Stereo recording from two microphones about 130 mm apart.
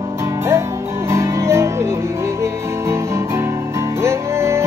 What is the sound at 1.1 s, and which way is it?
Music, 20° right (ahead or behind).